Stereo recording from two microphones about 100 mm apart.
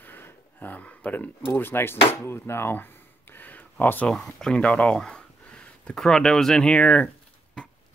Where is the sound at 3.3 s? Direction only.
20° left (ahead or behind).